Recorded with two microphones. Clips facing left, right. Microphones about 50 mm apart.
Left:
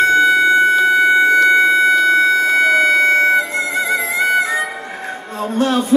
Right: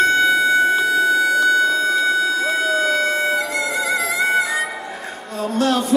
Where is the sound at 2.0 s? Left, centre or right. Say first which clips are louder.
Left 6 dB; left.